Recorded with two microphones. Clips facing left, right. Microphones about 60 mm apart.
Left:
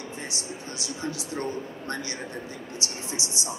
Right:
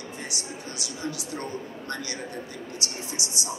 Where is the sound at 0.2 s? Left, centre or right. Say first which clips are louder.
Even; left.